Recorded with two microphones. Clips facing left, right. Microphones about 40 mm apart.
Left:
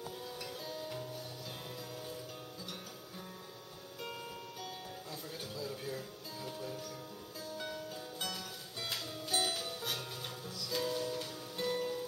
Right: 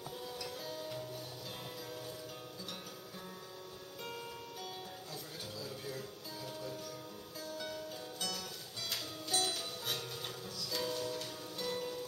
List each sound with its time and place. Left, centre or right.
0.7 s music: centre
5.6 s music: centre
10.7 s music: centre